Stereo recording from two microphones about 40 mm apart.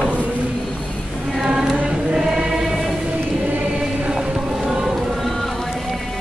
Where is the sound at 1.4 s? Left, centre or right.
Centre.